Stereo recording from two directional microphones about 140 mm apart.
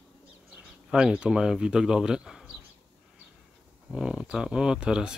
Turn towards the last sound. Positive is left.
turn(degrees=-5)  # may be behind; listen again after turning